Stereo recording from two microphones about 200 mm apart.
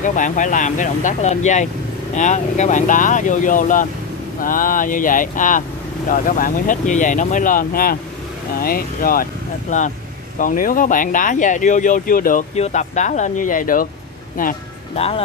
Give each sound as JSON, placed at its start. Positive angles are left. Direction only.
{"t": 0.0, "sound": "speech", "side_deg": 40}
{"t": 15.0, "sound": "speech", "side_deg": 30}